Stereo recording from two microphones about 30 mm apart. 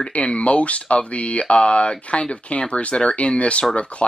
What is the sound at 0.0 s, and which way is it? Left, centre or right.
Speech, left.